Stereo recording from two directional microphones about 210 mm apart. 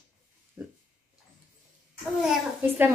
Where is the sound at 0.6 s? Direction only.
10° right (ahead or behind).